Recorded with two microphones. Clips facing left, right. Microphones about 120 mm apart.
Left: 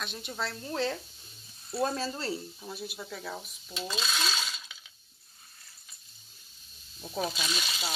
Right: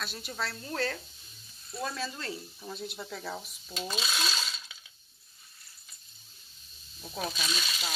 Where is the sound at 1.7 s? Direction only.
40° left (ahead or behind).